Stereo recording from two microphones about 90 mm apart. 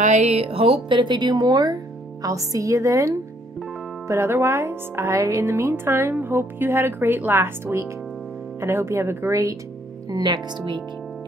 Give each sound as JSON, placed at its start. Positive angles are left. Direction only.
{"t": 0.5, "sound": "speech", "side_deg": -90}
{"t": 10.0, "sound": "speech", "side_deg": -50}